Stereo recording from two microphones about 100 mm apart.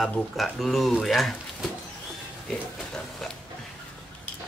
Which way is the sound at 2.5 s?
5° left (ahead or behind).